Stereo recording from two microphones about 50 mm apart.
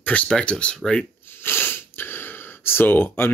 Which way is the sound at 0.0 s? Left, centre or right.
Left.